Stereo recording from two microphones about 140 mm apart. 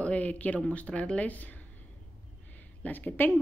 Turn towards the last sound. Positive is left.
turn(degrees=15)  # may be behind; listen again after turning